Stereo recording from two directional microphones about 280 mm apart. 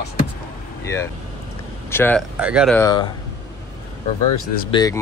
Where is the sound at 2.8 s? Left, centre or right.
Centre.